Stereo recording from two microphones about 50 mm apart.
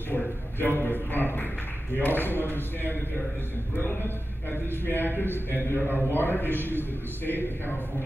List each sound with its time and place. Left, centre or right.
0.1 s a man's voice: left
4.8 s a man's voice: left